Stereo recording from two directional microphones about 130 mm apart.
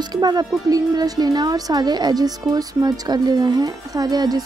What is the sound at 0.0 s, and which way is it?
Speech, 30° right (ahead or behind).